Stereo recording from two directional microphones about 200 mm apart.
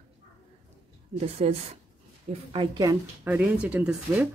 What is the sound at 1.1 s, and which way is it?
Speech, 30° right (ahead or behind).